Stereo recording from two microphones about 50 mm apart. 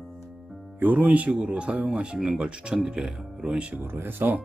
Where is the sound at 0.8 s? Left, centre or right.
Right.